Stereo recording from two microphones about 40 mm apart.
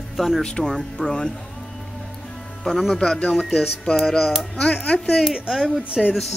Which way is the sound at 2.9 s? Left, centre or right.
Centre.